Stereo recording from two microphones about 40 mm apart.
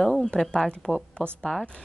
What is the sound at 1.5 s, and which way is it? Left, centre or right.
Speech, centre.